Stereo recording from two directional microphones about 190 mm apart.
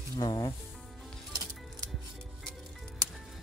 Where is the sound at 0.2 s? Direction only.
20° left (ahead or behind).